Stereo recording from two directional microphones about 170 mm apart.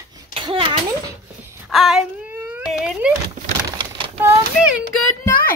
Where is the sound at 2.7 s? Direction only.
Centre (ahead or behind).